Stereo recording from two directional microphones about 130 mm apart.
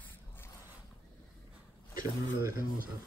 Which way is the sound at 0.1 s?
15° left (ahead or behind).